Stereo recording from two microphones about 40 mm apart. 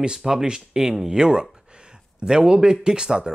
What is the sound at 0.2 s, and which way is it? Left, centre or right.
Speech, centre.